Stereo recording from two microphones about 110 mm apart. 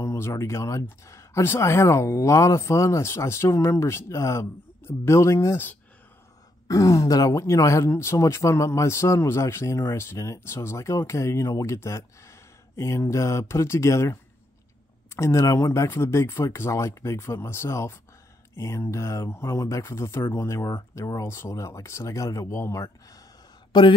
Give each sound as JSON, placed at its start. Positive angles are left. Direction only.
{"t": 0.0, "sound": "speech", "side_deg": 25}
{"t": 6.7, "sound": "speech", "side_deg": 30}
{"t": 15.1, "sound": "speech", "side_deg": 25}